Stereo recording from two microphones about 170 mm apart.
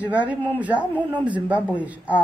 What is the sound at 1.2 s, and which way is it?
Speech, 10° right (ahead or behind).